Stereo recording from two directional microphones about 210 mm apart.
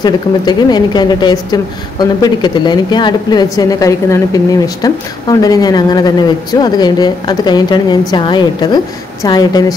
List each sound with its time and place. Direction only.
0.0 s a woman's voice: 20° left (ahead or behind)